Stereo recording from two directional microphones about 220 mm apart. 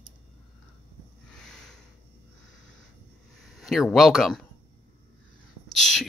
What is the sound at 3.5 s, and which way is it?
Speech, centre (ahead or behind).